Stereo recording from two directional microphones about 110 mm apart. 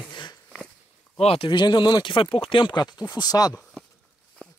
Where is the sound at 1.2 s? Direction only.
65° left (ahead or behind).